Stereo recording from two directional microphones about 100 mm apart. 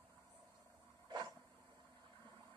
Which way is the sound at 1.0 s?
40° right (ahead or behind).